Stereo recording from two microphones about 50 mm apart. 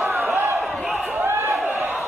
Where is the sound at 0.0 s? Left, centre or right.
Centre.